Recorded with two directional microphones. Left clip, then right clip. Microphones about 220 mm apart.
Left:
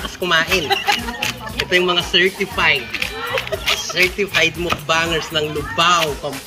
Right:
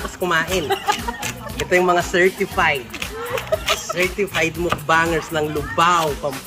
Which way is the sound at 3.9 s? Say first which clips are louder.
Left 4 dB; 10° right (ahead or behind).